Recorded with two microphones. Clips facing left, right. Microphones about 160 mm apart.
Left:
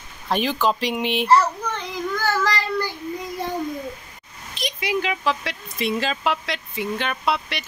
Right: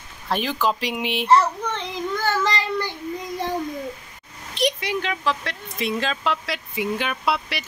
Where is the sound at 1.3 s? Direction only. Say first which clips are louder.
Right 1 dB; 25° right (ahead or behind).